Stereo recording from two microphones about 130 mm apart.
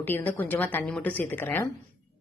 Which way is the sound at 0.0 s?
15° left (ahead or behind).